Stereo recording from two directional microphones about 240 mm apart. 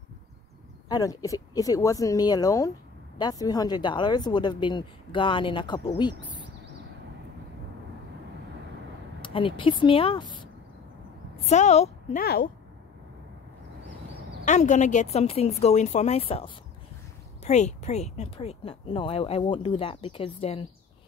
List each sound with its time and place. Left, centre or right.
0.8 s speech: centre
9.2 s a woman's voice: left
14.4 s speech: left